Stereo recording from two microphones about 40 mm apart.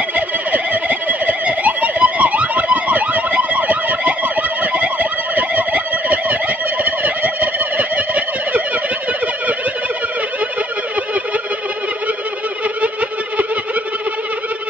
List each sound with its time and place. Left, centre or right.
0.1 s fowl: right
6.8 s turkey: right